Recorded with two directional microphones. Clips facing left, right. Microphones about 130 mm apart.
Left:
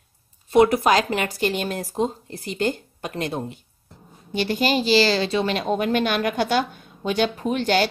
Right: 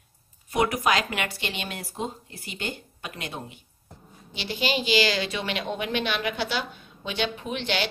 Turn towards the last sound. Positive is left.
turn(degrees=45)  # may be behind; listen again after turning